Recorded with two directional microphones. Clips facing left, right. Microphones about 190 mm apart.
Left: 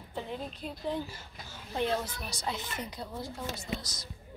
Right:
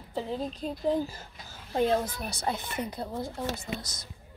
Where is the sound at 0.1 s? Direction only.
35° right (ahead or behind); by 3.3 s 55° right (ahead or behind).